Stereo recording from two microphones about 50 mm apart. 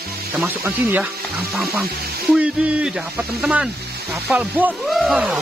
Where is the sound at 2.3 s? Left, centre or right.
Right.